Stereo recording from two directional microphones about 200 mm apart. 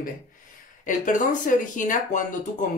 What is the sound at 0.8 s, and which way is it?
Speech, 40° left (ahead or behind).